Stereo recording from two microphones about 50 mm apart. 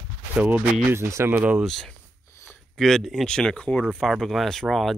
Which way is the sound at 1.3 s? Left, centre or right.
Right.